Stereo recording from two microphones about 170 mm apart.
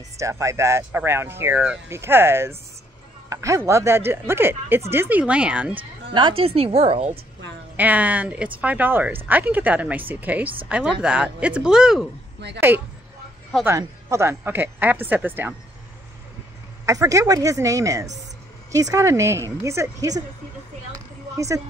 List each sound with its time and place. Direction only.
0.2 s speech: 20° right (ahead or behind)
5.8 s speech: 30° right (ahead or behind)
7.7 s speech: 10° right (ahead or behind)
16.8 s speech: 20° right (ahead or behind)